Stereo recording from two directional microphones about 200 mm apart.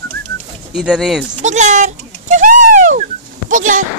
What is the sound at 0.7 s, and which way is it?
Speech, 5° right (ahead or behind).